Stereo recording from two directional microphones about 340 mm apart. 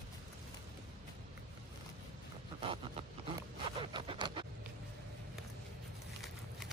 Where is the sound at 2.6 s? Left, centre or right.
Centre.